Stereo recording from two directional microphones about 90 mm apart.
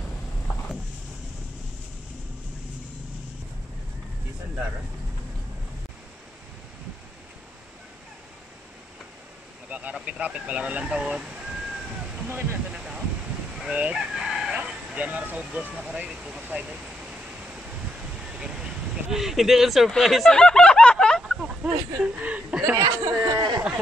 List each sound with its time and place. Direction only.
9.7 s speech: 15° right (ahead or behind)
12.3 s speech: 25° right (ahead or behind)
12.7 s a sound: 10° right (ahead or behind)
13.6 s speech: 15° right (ahead or behind)
18.4 s a sound: 10° right (ahead or behind); by 21.4 s 5° left (ahead or behind)
21.4 s speech: 15° right (ahead or behind)
22.8 s speech: 45° right (ahead or behind)